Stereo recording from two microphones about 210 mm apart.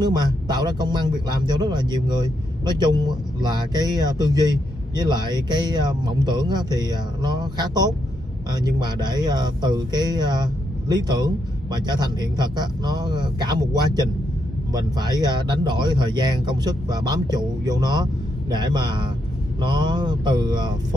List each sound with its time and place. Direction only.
0.0 s a man's voice: 20° right (ahead or behind)